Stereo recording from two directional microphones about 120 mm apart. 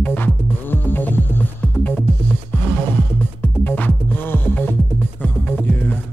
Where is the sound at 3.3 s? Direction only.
15° left (ahead or behind).